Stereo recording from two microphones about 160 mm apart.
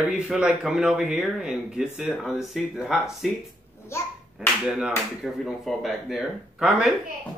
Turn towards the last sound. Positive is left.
turn(degrees=-5)  # may be behind; listen again after turning